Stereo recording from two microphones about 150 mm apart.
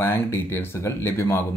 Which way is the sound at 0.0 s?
15° left (ahead or behind).